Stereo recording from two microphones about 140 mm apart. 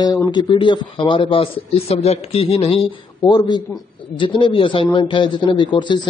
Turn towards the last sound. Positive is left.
turn(degrees=35)  # may be behind; listen again after turning